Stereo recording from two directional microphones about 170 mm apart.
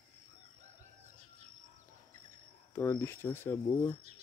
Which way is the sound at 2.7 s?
15° left (ahead or behind).